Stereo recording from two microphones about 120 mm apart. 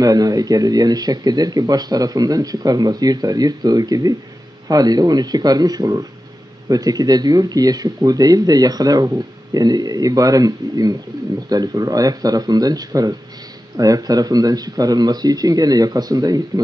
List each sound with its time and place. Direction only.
0.0 s speech: 30° right (ahead or behind)